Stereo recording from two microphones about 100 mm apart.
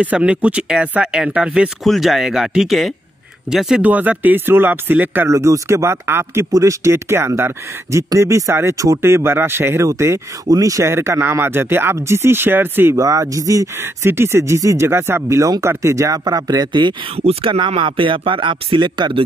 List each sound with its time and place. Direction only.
0.0 s speech: 10° right (ahead or behind)
13.0 s speech: 35° right (ahead or behind)
17.2 s speech: 90° right
17.5 s speech: 55° right (ahead or behind)